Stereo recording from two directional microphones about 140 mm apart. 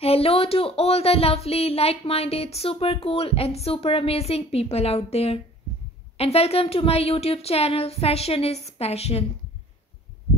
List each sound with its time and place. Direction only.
0.0 s speech: 45° left (ahead or behind)